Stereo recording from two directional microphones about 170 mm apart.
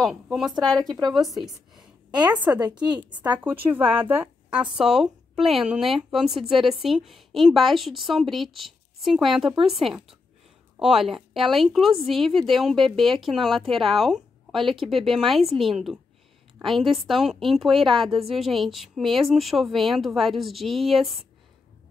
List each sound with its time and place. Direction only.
0.0 s speech: centre (ahead or behind)
2.0 s a sound: 25° right (ahead or behind)
2.3 s a woman's voice: 10° right (ahead or behind)
2.6 s a woman's voice: 25° right (ahead or behind)
2.9 s a woman's voice: 10° right (ahead or behind)